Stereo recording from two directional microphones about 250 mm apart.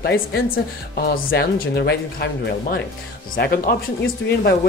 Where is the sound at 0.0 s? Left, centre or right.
Left.